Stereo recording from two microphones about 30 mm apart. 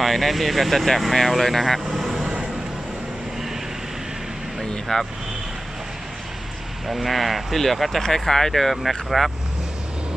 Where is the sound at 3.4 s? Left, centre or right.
Centre.